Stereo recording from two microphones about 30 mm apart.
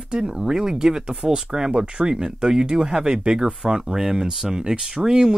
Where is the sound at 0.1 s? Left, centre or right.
Right.